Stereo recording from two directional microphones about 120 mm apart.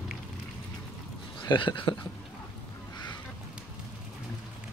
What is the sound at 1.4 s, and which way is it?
Speech, 45° left (ahead or behind).